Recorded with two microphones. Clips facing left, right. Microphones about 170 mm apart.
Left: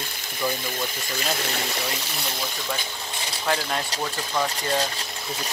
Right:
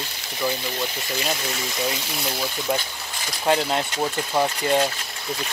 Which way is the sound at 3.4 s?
20° right (ahead or behind).